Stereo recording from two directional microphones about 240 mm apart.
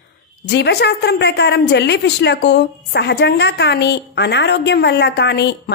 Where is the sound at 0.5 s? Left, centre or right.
Left.